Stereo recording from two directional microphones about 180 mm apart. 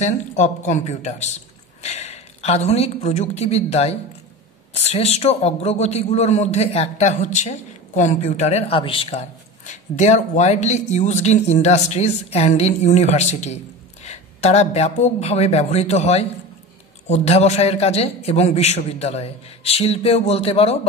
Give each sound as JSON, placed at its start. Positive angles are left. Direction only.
{"t": 0.0, "sound": "a man's voice", "side_deg": 40}